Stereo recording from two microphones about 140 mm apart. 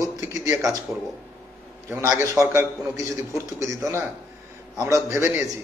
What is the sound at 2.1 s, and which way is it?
A man's voice, 20° right (ahead or behind).